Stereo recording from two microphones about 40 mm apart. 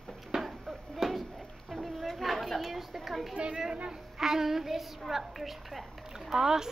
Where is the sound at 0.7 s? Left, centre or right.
Centre.